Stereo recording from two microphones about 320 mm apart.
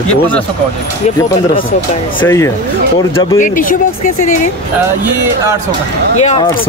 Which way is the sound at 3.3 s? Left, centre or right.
Left.